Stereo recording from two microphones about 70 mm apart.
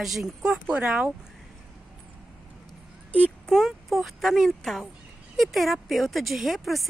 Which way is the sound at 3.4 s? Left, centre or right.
Centre.